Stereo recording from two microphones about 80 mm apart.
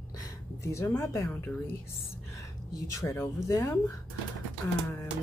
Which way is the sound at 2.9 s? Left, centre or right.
Left.